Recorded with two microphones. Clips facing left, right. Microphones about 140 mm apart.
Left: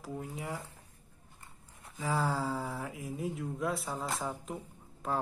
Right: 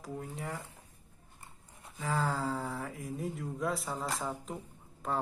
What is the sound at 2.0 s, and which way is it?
Speech, 5° left (ahead or behind).